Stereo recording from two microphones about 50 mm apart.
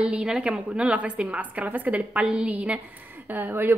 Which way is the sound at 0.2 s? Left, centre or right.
Centre.